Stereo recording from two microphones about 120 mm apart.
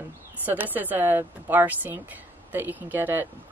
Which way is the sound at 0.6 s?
15° right (ahead or behind).